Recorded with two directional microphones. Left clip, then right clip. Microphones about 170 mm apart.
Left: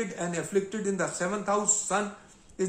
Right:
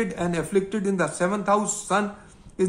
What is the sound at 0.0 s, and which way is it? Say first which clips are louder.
A man's voice: right 6 dB; 30° right (ahead or behind).